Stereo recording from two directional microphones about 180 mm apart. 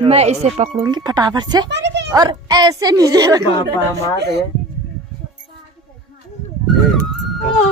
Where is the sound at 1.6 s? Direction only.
75° right (ahead or behind).